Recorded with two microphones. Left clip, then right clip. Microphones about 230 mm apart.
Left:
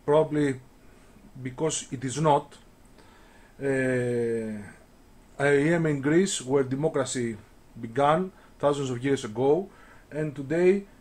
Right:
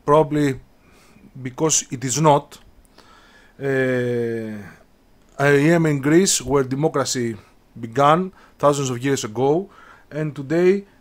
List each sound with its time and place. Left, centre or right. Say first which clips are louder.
0.0 s speech: right 6 dB; right